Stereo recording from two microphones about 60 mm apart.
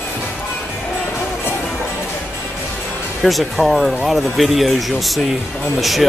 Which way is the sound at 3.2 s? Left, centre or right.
Centre.